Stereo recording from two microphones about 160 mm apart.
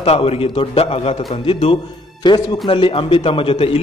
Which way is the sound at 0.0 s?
40° left (ahead or behind).